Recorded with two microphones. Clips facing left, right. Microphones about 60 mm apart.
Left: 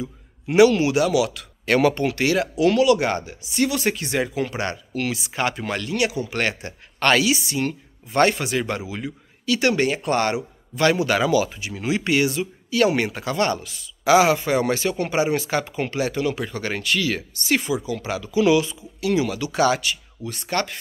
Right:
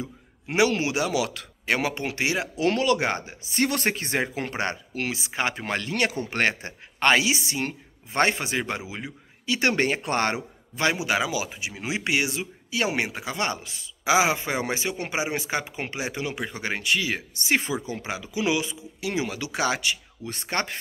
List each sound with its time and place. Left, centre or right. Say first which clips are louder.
0.0 s a man's voice: left 4 dB; right
1.7 s speech: left 7 dB; centre
2.5 s speech: left 6 dB; right
10.9 s speech: left 5 dB; centre